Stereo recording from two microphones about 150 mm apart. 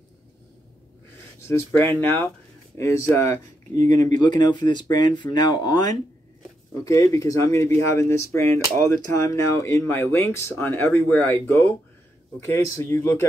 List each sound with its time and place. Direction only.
1.4 s speech: 20° left (ahead or behind)
4.2 s speech: 30° left (ahead or behind)